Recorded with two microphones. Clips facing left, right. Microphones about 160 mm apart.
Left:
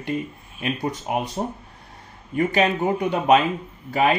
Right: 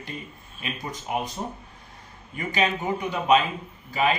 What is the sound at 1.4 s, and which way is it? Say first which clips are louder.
Speech: left 6 dB; 45° left (ahead or behind).